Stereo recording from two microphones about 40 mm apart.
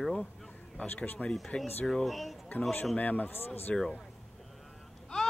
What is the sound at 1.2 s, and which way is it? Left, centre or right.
Speech, left.